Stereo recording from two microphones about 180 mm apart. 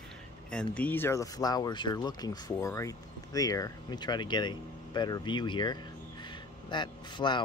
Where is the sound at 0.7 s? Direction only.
10° left (ahead or behind).